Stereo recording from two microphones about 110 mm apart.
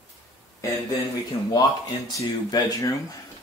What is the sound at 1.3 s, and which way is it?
Speech, 45° left (ahead or behind).